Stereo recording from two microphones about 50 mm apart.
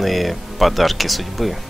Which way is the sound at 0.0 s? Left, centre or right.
Centre.